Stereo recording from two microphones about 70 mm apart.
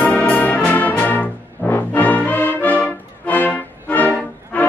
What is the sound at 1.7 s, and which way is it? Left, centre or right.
Music, left.